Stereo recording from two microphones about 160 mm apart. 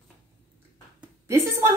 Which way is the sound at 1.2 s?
15° right (ahead or behind).